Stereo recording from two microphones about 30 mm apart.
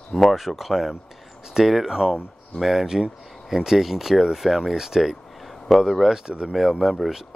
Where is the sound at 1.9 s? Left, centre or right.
Right.